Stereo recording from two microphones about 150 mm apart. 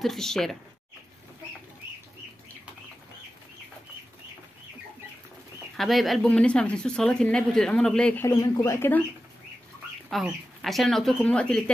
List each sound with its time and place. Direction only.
0.0 s speech: centre (ahead or behind)
5.8 s speech: centre (ahead or behind)
8.4 s speech: 20° left (ahead or behind)
10.0 s speech: centre (ahead or behind)